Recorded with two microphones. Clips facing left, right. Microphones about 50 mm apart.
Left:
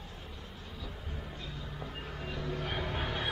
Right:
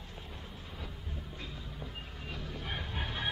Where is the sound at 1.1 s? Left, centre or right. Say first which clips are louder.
Left 2 dB; left.